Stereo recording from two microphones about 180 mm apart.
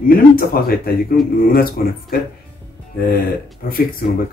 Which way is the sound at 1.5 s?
55° left (ahead or behind).